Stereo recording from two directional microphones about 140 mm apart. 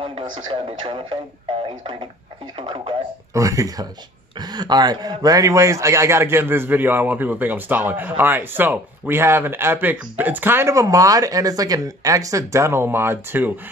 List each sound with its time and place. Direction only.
0.0 s speech: 35° right (ahead or behind)
2.5 s speech: 35° right (ahead or behind)
3.3 s a man's voice: 25° right (ahead or behind)